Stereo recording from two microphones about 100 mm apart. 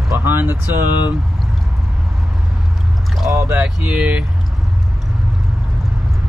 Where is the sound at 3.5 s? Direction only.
15° right (ahead or behind).